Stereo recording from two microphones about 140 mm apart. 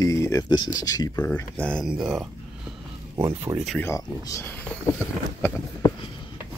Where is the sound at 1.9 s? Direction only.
5° right (ahead or behind).